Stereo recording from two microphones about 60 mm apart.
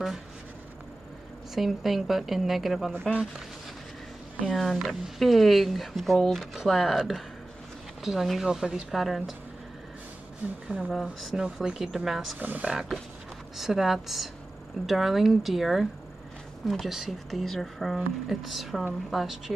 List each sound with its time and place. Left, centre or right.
1.5 s a woman's voice: centre
2.9 s speech: centre
4.7 s speech: centre
5.2 s a woman's voice: centre
10.4 s speech: right
10.9 s a woman's voice: centre
12.4 s speech: right
12.6 s a woman's voice: centre